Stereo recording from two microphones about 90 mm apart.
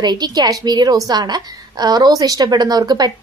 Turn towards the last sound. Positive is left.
turn(degrees=-50)  # may be behind; listen again after turning